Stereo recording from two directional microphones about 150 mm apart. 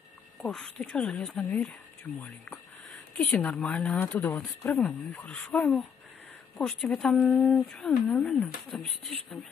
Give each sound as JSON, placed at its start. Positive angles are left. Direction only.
{"t": 0.4, "sound": "speech", "side_deg": 5}